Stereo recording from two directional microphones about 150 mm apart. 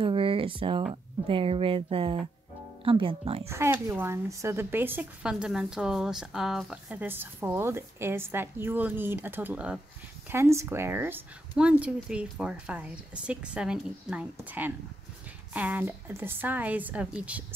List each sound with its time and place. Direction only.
0.0 s a sound: 35° right (ahead or behind)
1.2 s speech: 35° right (ahead or behind)
3.4 s speech: 20° right (ahead or behind)